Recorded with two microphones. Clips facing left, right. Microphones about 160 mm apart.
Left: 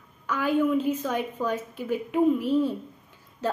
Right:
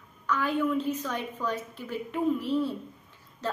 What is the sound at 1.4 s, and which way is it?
Speech, 45° left (ahead or behind).